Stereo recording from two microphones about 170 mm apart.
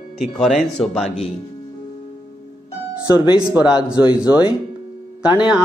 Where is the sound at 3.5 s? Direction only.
10° right (ahead or behind).